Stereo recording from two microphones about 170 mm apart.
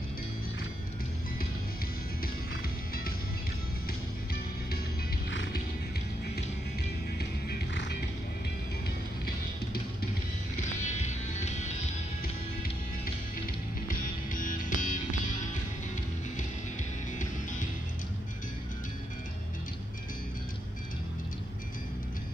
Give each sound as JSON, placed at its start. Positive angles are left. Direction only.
{"t": 2.2, "sound": "music", "side_deg": 60}
{"t": 5.3, "sound": "music", "side_deg": 90}
{"t": 7.2, "sound": "music", "side_deg": 70}
{"t": 10.8, "sound": "music", "side_deg": 45}
{"t": 13.8, "sound": "music", "side_deg": 50}